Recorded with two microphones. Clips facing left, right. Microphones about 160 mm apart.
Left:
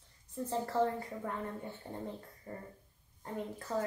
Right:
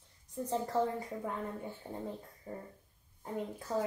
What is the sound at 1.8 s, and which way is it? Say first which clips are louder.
Speech: right 1 dB; 5° right (ahead or behind).